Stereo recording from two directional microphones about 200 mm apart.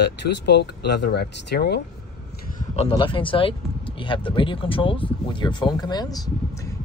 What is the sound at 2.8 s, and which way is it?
Speech, 25° left (ahead or behind).